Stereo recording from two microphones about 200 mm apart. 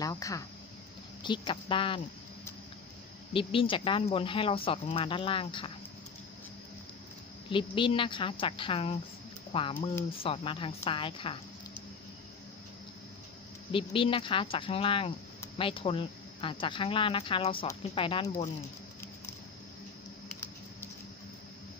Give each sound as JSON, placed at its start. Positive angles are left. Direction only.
{"t": 0.0, "sound": "speech", "side_deg": 15}
{"t": 3.3, "sound": "speech", "side_deg": 25}
{"t": 7.4, "sound": "speech", "side_deg": 25}
{"t": 13.7, "sound": "speech", "side_deg": 25}